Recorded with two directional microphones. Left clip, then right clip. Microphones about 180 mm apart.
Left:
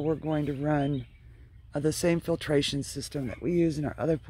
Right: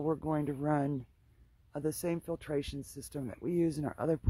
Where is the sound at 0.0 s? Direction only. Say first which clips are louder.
Left 4 dB; 40° right (ahead or behind).